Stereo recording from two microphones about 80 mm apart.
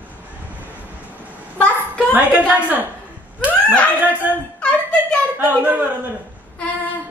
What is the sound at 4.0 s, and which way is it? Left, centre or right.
Speech, centre.